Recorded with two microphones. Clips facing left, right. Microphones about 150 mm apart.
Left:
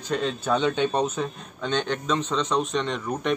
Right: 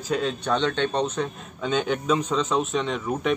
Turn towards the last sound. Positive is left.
turn(degrees=0)  # may be behind; listen again after turning